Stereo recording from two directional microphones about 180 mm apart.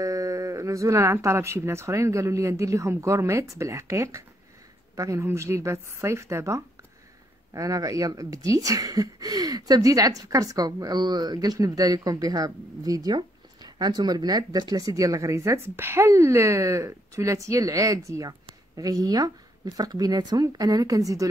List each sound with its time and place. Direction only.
0.0 s speech: 20° right (ahead or behind)